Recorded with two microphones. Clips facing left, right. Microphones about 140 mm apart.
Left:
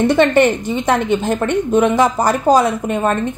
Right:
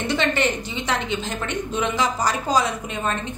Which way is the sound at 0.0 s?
50° left (ahead or behind).